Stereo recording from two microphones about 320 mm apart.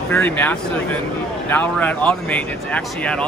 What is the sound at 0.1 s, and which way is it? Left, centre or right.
Speech, centre.